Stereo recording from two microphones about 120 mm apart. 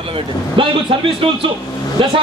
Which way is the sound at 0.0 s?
45° right (ahead or behind).